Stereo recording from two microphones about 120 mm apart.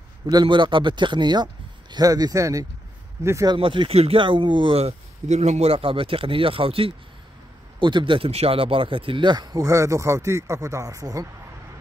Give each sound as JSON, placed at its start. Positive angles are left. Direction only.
{"t": 0.3, "sound": "speech", "side_deg": -40}
{"t": 3.4, "sound": "speech", "side_deg": -45}
{"t": 4.7, "sound": "speech", "side_deg": -65}